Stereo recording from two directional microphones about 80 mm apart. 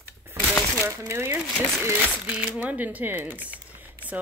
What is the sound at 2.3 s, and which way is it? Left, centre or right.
Speech, centre.